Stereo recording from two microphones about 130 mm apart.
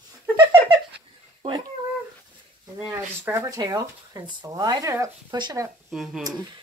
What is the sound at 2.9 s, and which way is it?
Speech, 20° right (ahead or behind).